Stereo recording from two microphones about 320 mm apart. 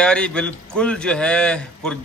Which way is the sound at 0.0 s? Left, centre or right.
Centre.